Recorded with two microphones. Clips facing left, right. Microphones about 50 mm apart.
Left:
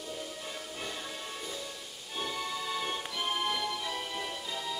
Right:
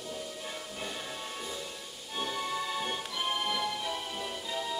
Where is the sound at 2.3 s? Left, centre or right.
Right.